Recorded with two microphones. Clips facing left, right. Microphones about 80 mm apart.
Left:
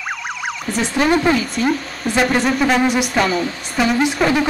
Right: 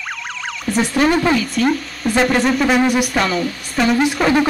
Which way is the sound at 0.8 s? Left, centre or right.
Left.